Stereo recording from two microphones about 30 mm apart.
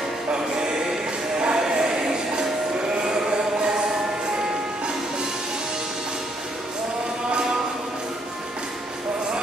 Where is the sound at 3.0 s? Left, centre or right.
Right.